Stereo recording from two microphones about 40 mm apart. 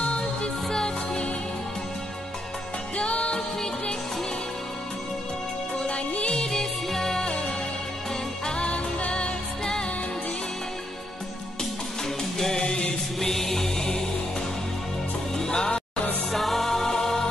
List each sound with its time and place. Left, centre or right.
0.0 s music: left
3.0 s music: left
5.9 s music: left
12.4 s music: centre
12.6 s music: left
13.2 s music: centre
15.3 s music: centre
16.3 s music: centre